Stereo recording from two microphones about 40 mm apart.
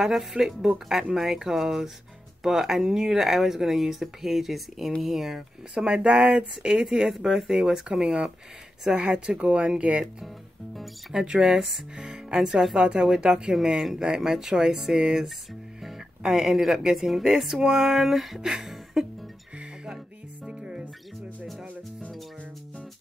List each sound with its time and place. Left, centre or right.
0.0 s speech: centre
5.8 s speech: right
10.2 s music: centre
11.1 s speech: centre
11.6 s speech: centre
20.4 s music: centre